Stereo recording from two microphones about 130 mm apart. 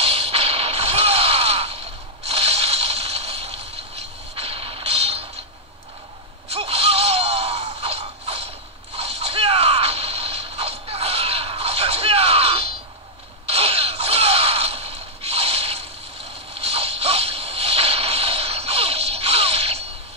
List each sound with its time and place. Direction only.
0.0 s whip: 50° right (ahead or behind)
4.4 s music: 45° right (ahead or behind)
6.5 s a sound: 50° right (ahead or behind)